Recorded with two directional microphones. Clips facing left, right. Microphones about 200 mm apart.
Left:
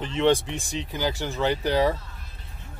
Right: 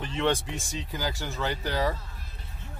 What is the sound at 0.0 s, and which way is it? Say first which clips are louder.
Speech: left 6 dB; 20° left (ahead or behind).